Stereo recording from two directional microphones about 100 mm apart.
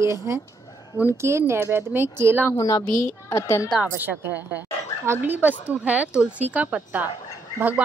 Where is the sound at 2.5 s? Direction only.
35° left (ahead or behind).